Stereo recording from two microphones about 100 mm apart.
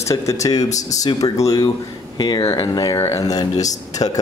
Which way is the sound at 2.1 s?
45° left (ahead or behind).